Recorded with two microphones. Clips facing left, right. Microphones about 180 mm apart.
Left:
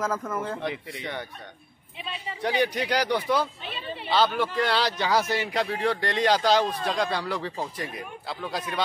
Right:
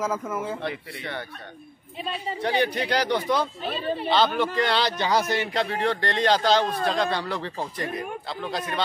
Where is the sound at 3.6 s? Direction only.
40° right (ahead or behind).